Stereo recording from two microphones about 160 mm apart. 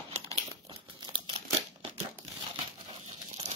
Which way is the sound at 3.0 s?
45° right (ahead or behind).